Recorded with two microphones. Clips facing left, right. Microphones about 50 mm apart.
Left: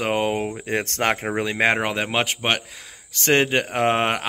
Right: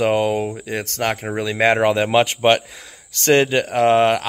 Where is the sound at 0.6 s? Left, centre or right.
Left.